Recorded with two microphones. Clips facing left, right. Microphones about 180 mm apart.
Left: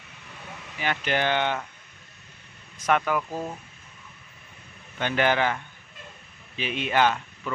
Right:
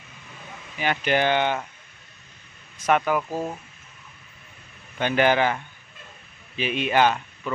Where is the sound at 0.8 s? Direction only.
15° right (ahead or behind).